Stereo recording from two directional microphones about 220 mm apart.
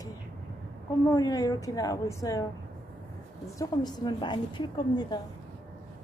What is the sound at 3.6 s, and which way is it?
Speech, 20° left (ahead or behind).